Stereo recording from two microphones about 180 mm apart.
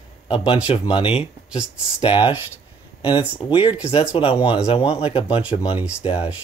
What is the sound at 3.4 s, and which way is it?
Speech, 30° left (ahead or behind).